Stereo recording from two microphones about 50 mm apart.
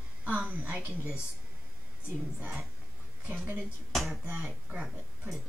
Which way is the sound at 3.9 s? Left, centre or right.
Centre.